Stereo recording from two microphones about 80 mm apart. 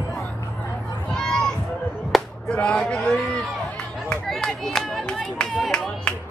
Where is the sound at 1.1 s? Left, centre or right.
Centre.